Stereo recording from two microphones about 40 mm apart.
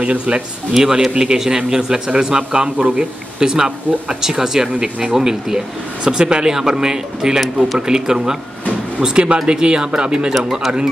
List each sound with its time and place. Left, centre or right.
0.0 s speech: right
0.8 s a man's voice: centre
10.3 s speech: centre